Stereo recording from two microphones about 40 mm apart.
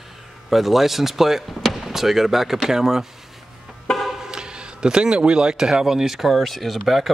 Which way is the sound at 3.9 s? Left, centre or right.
Centre.